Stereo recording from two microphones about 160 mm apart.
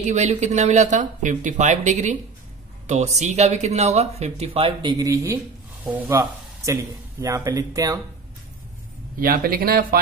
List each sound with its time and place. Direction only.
0.0 s speech: 45° right (ahead or behind)
4.8 s speech: 20° right (ahead or behind)
9.2 s speech: 65° right (ahead or behind)